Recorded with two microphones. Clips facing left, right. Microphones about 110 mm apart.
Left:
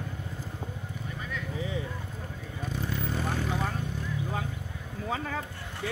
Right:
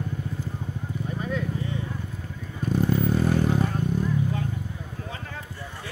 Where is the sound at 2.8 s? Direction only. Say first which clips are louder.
Right 9 dB; 45° right (ahead or behind).